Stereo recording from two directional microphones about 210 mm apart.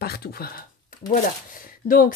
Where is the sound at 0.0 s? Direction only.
50° left (ahead or behind).